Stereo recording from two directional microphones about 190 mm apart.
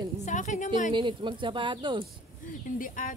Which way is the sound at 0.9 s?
25° right (ahead or behind).